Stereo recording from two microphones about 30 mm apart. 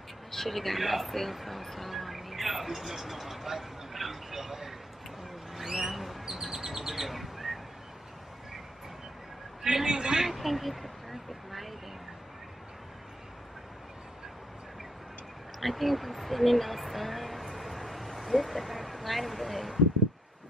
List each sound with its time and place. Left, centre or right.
0.3 s speech: centre
5.5 s vehicle: centre
6.2 s bird: centre
9.6 s a sound: centre
9.8 s a man's voice: right
10.2 s speech: centre
15.6 s speech: centre